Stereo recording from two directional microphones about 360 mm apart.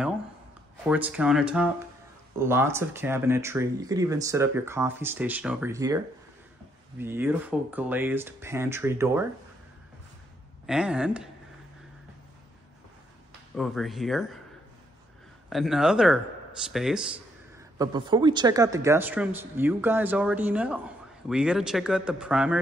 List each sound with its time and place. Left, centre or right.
0.8 s speech: centre
10.7 s speech: centre
13.6 s speech: centre
15.5 s speech: centre